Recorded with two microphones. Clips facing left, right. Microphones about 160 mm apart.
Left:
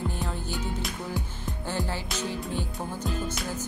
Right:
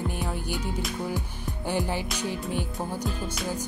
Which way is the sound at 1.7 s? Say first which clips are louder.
Right 4 dB; 15° right (ahead or behind).